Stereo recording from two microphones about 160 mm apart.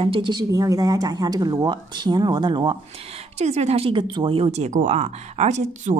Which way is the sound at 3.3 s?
40° right (ahead or behind).